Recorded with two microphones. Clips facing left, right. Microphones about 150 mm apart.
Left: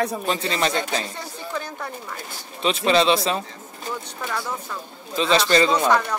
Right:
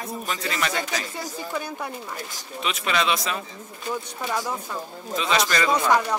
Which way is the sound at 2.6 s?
30° left (ahead or behind).